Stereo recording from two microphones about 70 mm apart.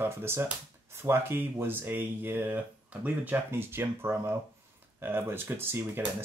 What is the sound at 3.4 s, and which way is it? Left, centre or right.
Speech, right.